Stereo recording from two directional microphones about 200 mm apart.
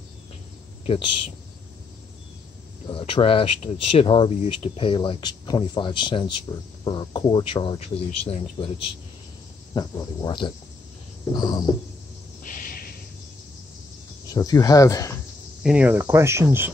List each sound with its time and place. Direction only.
2.9 s speech: 25° left (ahead or behind)
9.8 s speech: 20° left (ahead or behind)
12.4 s a sound: 45° left (ahead or behind)
14.2 s speech: 15° left (ahead or behind)
15.6 s speech: 5° right (ahead or behind)